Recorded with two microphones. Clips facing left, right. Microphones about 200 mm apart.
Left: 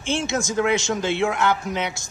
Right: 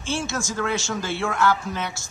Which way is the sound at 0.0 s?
20° left (ahead or behind).